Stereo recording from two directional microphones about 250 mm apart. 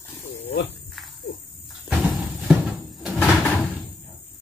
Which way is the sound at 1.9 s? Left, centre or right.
Centre.